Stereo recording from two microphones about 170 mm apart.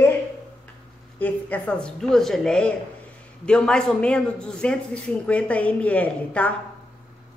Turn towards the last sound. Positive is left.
turn(degrees=10)  # may be behind; listen again after turning